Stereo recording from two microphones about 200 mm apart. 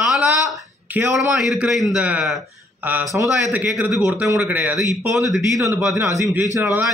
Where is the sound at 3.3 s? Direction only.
Centre (ahead or behind).